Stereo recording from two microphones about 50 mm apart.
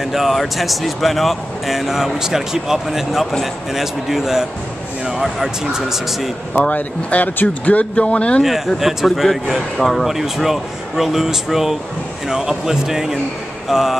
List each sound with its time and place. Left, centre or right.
0.0 s speech: centre
6.7 s speech: left
8.5 s speech: centre